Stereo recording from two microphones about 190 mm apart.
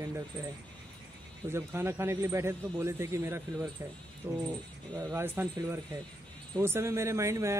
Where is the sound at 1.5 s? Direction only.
15° right (ahead or behind).